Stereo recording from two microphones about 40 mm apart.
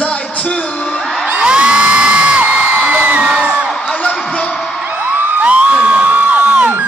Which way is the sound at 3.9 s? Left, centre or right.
Left.